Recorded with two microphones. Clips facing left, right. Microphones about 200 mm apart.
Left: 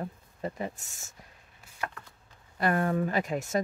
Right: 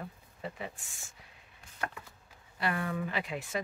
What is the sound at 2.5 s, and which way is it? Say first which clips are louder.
Speech: left 7 dB; 45° left (ahead or behind).